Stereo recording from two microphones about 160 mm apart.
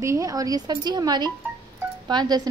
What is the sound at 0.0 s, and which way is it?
A woman's voice, 20° right (ahead or behind).